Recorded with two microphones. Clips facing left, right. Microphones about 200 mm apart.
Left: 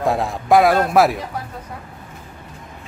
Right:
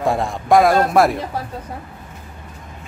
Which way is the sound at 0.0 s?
Centre (ahead or behind).